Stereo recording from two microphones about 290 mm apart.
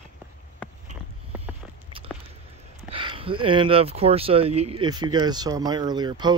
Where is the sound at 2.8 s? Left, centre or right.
Centre.